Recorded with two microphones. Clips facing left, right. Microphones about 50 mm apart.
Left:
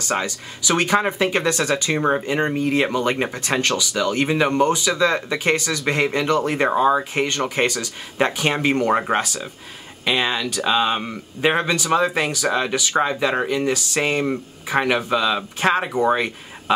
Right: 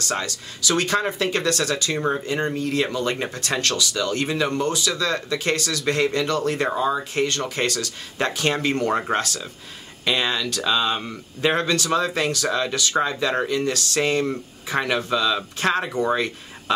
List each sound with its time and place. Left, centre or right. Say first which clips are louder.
0.0 s speech: left 3 dB; centre